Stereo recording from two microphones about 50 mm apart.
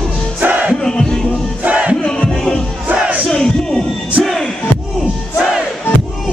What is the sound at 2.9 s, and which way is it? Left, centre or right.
Battle cry, right.